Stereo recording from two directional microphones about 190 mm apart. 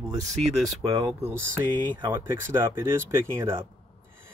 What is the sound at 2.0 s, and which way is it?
Speech, 10° right (ahead or behind).